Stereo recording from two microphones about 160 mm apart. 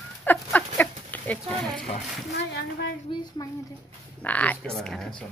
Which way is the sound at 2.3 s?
90° left.